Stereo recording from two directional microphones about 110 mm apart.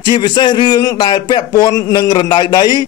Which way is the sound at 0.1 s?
45° left (ahead or behind).